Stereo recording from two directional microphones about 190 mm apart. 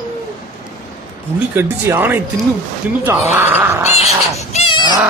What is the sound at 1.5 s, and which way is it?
Speech, 10° right (ahead or behind).